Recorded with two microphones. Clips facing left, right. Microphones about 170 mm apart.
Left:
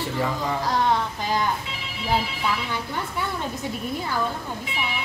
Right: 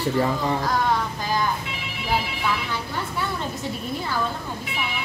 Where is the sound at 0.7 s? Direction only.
25° left (ahead or behind).